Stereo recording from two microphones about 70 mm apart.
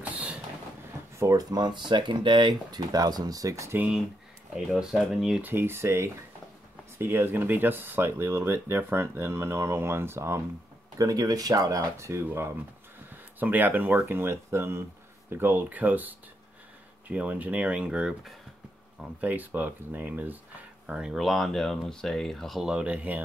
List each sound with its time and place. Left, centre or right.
0.0 s train: right
1.1 s a sound: right
1.5 s speech: right
2.7 s speech: right
4.6 s speech: centre
5.4 s speech: right
11.0 s speech: right
12.0 s speech: right
13.1 s speech: right
19.2 s speech: right
20.8 s speech: centre
21.2 s speech: centre
22.6 s speech: centre